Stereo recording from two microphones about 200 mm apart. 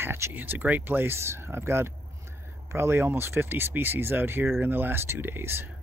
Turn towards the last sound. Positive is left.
turn(degrees=-10)  # may be behind; listen again after turning